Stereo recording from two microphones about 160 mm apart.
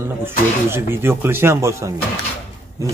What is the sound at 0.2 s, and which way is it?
Speech, 15° right (ahead or behind).